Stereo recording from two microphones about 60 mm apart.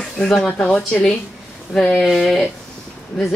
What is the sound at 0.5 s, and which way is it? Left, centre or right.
Speech, left.